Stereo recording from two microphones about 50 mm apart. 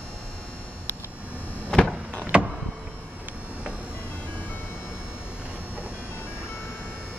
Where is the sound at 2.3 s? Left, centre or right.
Right.